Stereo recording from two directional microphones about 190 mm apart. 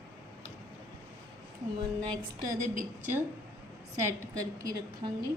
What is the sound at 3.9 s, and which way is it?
A woman's voice, 20° right (ahead or behind).